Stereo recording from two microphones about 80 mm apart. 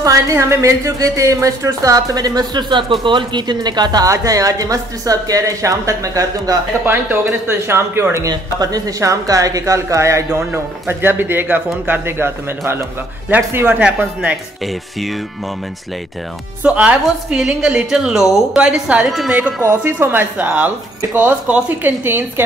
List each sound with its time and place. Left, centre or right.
0.0 s speech: right
6.8 s speech: right
8.3 s a woman's voice: right; by 14.4 s centre
14.6 s speech: centre
16.6 s a woman's voice: centre
19.0 s speech: centre
19.6 s speech: right